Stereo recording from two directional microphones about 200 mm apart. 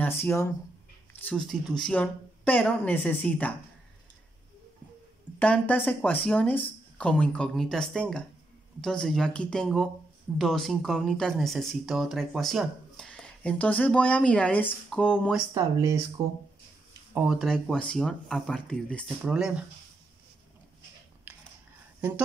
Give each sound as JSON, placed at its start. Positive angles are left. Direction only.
{"t": 0.0, "sound": "speech", "side_deg": 10}
{"t": 1.2, "sound": "speech", "side_deg": 0}
{"t": 5.4, "sound": "speech", "side_deg": 5}
{"t": 15.5, "sound": "speech", "side_deg": -15}
{"t": 17.1, "sound": "speech", "side_deg": -5}
{"t": 21.3, "sound": "a sound", "side_deg": -5}